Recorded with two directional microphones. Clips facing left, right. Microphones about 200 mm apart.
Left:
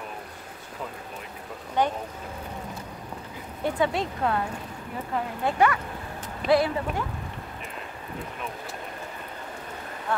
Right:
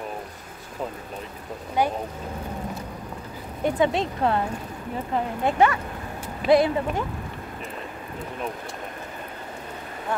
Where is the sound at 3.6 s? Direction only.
20° right (ahead or behind).